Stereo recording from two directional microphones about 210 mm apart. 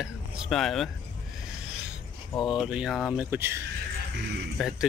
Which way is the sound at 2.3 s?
20° left (ahead or behind).